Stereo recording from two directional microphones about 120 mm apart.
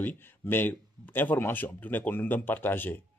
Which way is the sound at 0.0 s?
15° left (ahead or behind).